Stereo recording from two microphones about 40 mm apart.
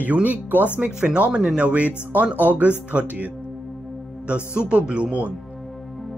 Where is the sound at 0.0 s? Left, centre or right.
Right.